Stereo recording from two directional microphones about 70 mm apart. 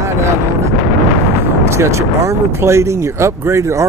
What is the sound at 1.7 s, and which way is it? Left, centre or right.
Speech, right.